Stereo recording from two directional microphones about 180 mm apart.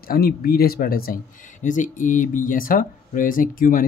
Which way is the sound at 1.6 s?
45° left (ahead or behind).